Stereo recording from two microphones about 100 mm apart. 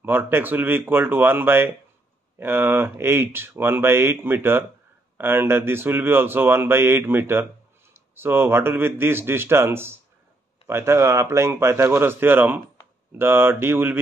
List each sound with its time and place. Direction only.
0.0 s speech: 20° right (ahead or behind)